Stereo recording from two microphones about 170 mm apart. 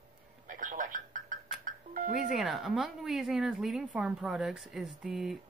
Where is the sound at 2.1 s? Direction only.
Centre (ahead or behind).